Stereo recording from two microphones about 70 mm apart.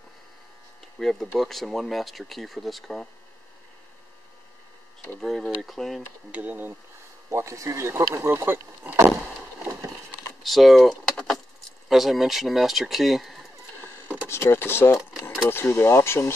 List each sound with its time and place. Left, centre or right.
0.9 s speech: centre
5.2 s speech: centre
6.3 s speech: right
7.2 s speech: right
10.4 s vehicle: centre
11.9 s speech: centre
14.3 s speech: left